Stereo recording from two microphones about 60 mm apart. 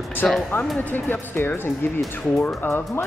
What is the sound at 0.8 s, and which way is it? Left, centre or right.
Speech, left.